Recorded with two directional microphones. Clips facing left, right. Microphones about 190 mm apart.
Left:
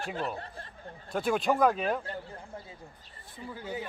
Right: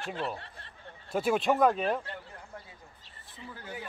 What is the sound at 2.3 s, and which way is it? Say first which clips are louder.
Speech: left 3 dB; 25° left (ahead or behind).